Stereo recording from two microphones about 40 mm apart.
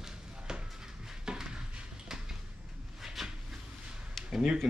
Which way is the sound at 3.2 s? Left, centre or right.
Centre.